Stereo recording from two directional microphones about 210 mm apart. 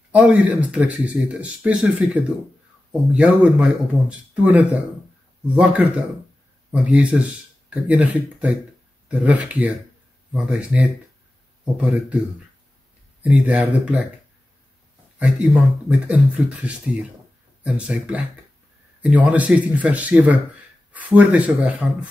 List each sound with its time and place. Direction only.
0.1 s speech: 5° right (ahead or behind)
13.2 s speech: 5° right (ahead or behind)
15.1 s speech: 5° right (ahead or behind)